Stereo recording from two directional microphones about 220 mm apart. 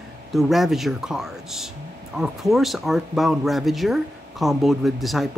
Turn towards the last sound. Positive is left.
turn(degrees=0)  # may be behind; listen again after turning